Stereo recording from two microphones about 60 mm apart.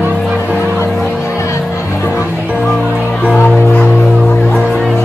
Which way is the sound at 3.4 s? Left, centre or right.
Left.